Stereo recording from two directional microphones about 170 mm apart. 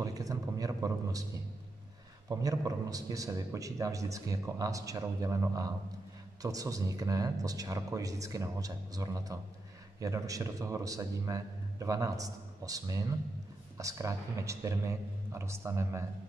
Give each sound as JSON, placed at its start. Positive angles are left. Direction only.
{"t": 0.0, "sound": "speech", "side_deg": -20}
{"t": 2.2, "sound": "a man's voice", "side_deg": -20}